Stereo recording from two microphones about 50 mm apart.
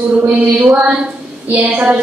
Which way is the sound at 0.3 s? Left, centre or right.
Right.